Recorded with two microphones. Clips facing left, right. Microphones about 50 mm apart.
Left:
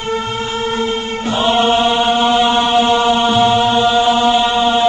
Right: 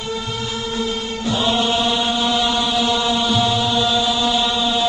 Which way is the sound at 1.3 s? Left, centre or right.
Left.